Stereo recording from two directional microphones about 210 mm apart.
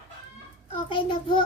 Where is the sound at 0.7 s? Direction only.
25° left (ahead or behind).